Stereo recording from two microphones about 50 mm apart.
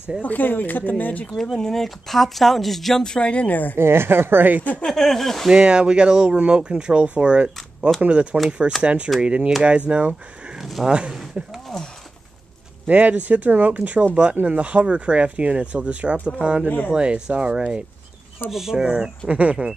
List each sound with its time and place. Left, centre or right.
0.2 s speech: left
1.3 s speech: centre
3.3 s speech: left
3.7 s speech: right
4.8 s speech: centre
5.5 s speech: centre
10.6 s a sound: centre
10.9 s speech: right
12.8 s speech: right